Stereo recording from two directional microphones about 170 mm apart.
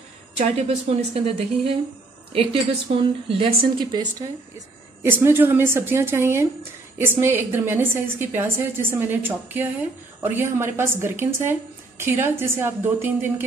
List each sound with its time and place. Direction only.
0.8 s a woman's voice: 35° right (ahead or behind)
5.0 s a woman's voice: 15° right (ahead or behind)